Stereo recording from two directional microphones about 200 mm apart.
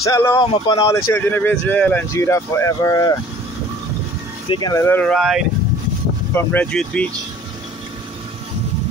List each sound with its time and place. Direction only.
0.0 s speech: 15° left (ahead or behind)
4.5 s speech: 20° left (ahead or behind); by 5.5 s 5° right (ahead or behind)
6.3 s speech: 10° left (ahead or behind)